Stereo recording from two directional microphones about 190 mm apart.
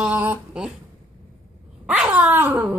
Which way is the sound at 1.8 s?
5° right (ahead or behind).